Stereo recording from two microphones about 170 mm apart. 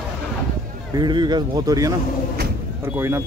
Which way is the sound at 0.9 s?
25° right (ahead or behind).